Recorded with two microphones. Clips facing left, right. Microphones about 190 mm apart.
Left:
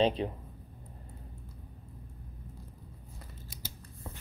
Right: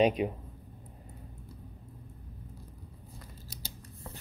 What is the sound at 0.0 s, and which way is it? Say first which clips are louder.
Speech: right 2 dB; 10° right (ahead or behind).